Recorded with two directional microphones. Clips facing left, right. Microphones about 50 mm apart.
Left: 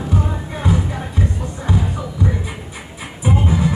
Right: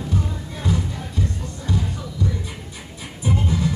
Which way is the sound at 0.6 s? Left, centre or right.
Left.